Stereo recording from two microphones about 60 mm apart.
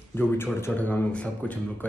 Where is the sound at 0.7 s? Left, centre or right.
Left.